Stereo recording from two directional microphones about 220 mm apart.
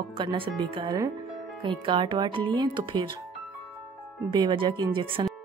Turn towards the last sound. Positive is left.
turn(degrees=-25)  # may be behind; listen again after turning